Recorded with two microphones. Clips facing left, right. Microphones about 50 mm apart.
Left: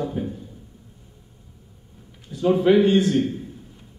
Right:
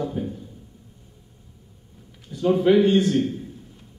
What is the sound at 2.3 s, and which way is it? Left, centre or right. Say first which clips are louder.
Speech: left 1 dB; centre.